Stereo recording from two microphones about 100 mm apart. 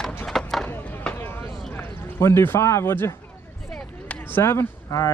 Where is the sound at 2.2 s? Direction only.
25° left (ahead or behind).